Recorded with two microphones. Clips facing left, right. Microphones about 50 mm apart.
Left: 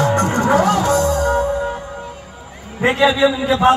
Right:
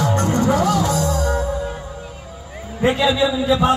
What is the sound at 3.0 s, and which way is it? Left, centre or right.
Speech, left.